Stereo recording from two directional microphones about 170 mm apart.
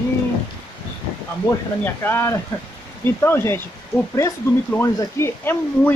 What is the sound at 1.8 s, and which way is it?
Speech, 10° left (ahead or behind).